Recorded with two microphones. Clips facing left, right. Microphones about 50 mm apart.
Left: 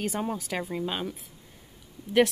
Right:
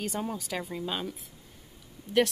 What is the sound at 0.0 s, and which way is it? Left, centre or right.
Speech, centre.